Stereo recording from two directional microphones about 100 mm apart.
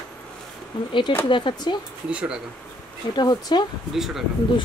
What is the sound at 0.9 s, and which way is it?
Speech, 55° left (ahead or behind).